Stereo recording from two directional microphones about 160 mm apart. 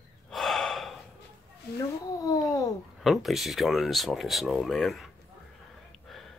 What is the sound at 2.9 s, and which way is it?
Speech, centre (ahead or behind).